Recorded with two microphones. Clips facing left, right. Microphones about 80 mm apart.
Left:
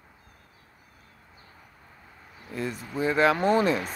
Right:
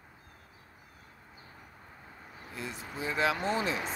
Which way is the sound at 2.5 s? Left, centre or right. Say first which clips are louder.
Left 8 dB; left.